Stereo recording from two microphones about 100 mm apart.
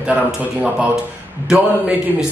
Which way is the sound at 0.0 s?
10° right (ahead or behind).